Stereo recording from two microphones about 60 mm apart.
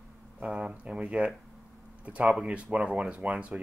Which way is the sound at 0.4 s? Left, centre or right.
Centre.